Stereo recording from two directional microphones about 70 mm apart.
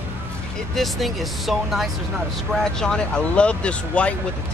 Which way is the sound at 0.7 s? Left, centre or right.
Centre.